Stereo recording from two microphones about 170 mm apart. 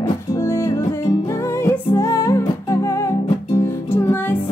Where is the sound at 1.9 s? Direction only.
15° left (ahead or behind).